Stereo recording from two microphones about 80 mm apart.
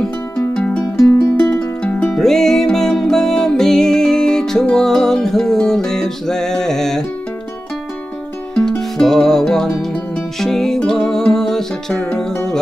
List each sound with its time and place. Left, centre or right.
0.6 s music: centre
2.1 s music: centre
8.5 s music: centre